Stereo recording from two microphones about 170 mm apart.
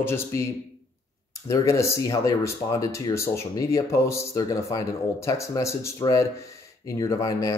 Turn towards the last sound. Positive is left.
turn(degrees=20)  # may be behind; listen again after turning